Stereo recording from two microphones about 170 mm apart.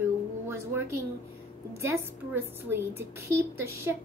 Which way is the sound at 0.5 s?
15° right (ahead or behind).